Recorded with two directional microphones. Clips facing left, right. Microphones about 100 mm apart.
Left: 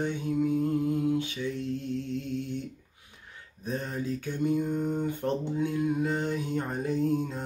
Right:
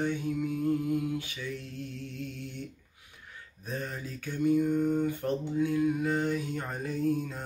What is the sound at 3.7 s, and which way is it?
Mantra, 25° left (ahead or behind).